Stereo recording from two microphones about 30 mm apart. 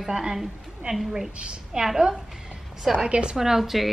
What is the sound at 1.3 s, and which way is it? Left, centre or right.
Speech, right.